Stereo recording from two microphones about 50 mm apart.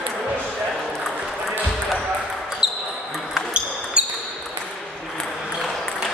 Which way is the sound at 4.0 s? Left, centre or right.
Right.